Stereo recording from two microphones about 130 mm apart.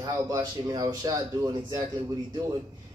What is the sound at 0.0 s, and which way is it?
Speech, 30° right (ahead or behind).